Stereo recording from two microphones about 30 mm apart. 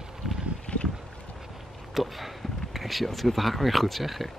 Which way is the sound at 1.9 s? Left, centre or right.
Centre.